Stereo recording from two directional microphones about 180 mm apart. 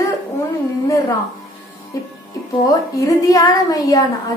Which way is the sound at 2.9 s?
20° left (ahead or behind).